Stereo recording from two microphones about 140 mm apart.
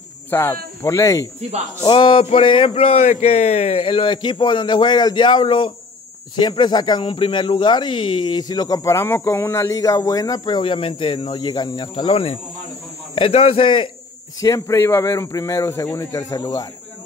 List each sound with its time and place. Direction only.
0.3 s speech: 15° left (ahead or behind)
1.9 s speech: 35° left (ahead or behind)
14.4 s speech: 20° left (ahead or behind)